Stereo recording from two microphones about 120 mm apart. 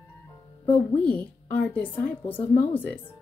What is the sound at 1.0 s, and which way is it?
Speech, 10° left (ahead or behind).